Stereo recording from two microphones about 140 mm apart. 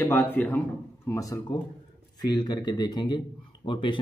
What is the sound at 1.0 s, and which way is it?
Speech, 25° left (ahead or behind).